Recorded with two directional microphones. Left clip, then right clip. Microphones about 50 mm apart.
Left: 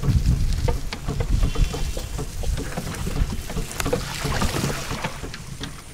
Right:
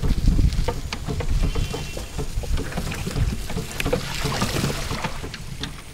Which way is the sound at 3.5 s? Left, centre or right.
Centre.